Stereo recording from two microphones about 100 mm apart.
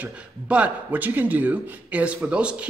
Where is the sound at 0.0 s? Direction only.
15° right (ahead or behind).